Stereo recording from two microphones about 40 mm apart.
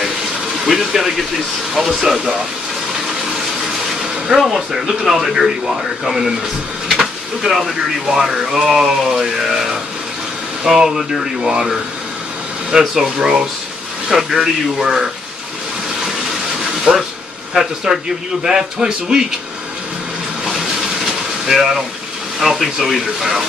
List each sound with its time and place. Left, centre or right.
0.7 s speech: centre
4.3 s speech: centre
12.7 s speech: centre
17.9 s a man's voice: centre
20.4 s vehicle: centre
22.4 s speech: centre